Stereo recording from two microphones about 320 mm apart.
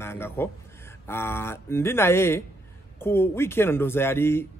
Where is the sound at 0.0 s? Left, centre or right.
Centre.